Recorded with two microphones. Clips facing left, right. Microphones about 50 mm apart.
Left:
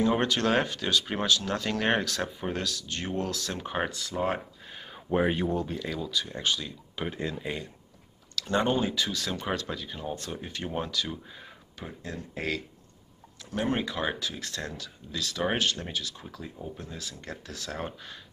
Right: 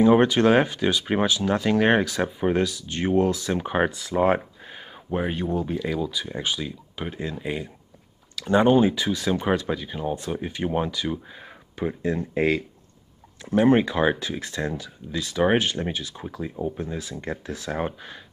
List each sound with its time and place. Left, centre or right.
0.0 s speech: centre
4.4 s a sound: centre
4.9 s speech: centre
7.0 s speech: centre